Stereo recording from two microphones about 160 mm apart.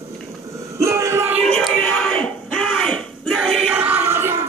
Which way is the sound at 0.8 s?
20° right (ahead or behind).